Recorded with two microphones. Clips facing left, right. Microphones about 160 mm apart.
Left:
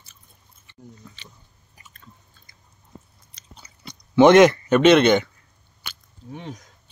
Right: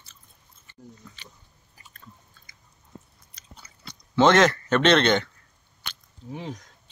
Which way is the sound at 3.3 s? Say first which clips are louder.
Left 1 dB; 20° left (ahead or behind).